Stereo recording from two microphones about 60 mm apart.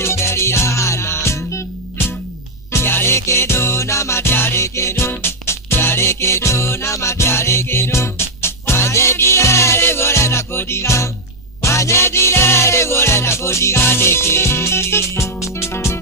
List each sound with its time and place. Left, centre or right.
0.0 s music: left
2.8 s music: left